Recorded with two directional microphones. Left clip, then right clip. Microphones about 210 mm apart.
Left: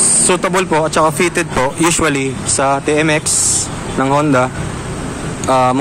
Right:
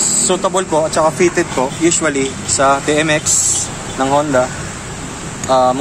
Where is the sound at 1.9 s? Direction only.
45° left (ahead or behind).